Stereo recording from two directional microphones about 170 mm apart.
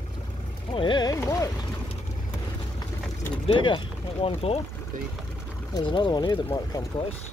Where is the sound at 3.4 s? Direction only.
30° left (ahead or behind).